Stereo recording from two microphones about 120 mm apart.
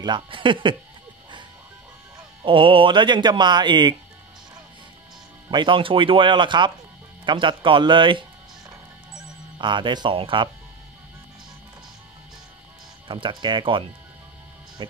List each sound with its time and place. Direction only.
0.0 s speech: 40° right (ahead or behind)
2.1 s speech: 45° right (ahead or behind)
5.5 s speech: 40° right (ahead or behind)
13.1 s speech: 40° right (ahead or behind)